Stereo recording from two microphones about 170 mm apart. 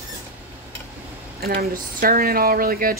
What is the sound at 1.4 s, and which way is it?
Speech, 60° right (ahead or behind).